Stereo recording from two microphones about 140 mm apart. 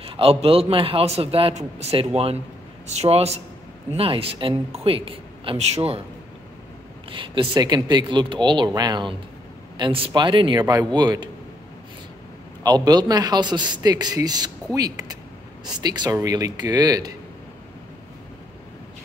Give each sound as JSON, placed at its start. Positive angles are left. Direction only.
{"t": 0.0, "sound": "a man's voice", "side_deg": -45}
{"t": 7.1, "sound": "speech", "side_deg": -40}
{"t": 12.6, "sound": "a man's voice", "side_deg": -30}